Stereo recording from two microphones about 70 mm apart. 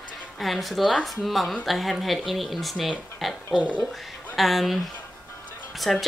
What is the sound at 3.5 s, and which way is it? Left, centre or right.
Speech, centre.